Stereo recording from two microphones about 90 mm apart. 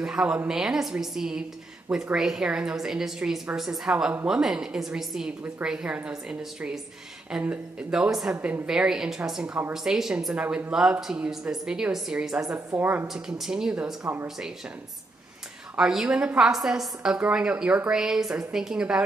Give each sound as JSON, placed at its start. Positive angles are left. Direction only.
{"t": 0.0, "sound": "a woman's voice", "side_deg": -10}
{"t": 12.5, "sound": "speech", "side_deg": -20}
{"t": 13.1, "sound": "a woman's voice", "side_deg": -5}
{"t": 15.7, "sound": "a woman's voice", "side_deg": -5}